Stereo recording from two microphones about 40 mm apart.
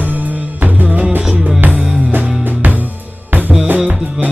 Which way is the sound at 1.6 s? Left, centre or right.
Right.